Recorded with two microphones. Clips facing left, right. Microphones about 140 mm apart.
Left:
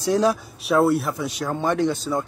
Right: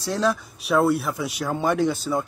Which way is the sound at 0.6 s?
Centre (ahead or behind).